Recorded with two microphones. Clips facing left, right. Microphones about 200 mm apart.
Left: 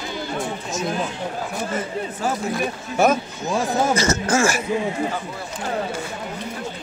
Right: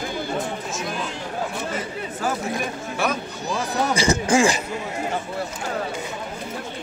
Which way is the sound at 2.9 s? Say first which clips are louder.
Left 8 dB; 45° left (ahead or behind).